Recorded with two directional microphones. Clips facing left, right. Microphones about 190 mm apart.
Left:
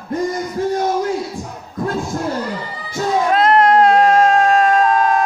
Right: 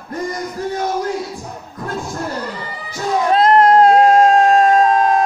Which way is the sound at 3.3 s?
35° right (ahead or behind).